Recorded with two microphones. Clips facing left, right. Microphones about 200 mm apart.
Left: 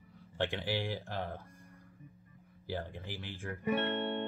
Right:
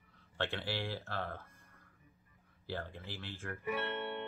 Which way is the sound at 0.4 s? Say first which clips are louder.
Left 4 dB; 15° left (ahead or behind).